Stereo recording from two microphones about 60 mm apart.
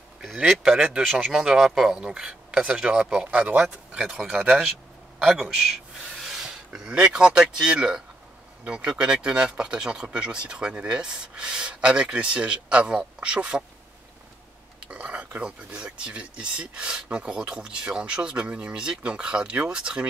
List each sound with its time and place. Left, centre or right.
0.5 s a man's voice: centre
14.9 s speech: right